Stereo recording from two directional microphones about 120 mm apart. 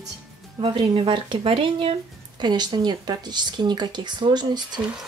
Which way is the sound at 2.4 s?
35° right (ahead or behind).